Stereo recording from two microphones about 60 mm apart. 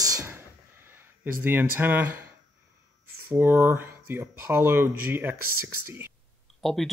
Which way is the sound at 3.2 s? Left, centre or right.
Right.